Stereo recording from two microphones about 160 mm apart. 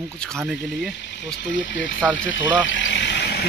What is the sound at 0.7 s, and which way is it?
Speech, 90° left.